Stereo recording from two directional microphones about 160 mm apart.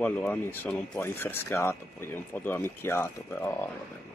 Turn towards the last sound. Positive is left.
turn(degrees=10)  # may be behind; listen again after turning